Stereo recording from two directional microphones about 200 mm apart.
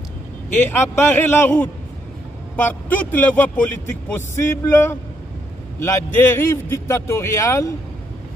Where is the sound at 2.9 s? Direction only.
10° left (ahead or behind).